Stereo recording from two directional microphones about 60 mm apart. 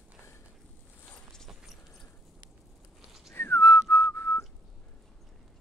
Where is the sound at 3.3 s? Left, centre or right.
Left.